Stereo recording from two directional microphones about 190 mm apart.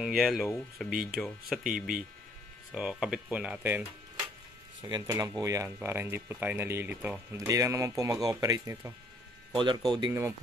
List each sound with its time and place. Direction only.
0.0 s speech: centre (ahead or behind)
4.8 s a man's voice: 20° right (ahead or behind)